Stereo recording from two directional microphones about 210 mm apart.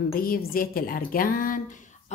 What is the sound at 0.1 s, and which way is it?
Speech, 45° left (ahead or behind).